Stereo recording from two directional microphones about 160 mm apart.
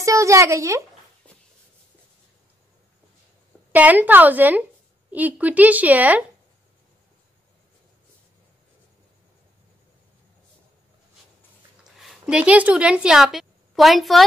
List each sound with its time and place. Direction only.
0.0 s a woman's voice: 20° right (ahead or behind)
3.7 s speech: 10° right (ahead or behind)
12.0 s a woman's voice: 5° right (ahead or behind)